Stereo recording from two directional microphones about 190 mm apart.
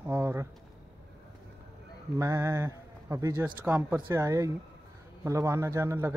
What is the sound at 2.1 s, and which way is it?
A man's voice, 15° right (ahead or behind).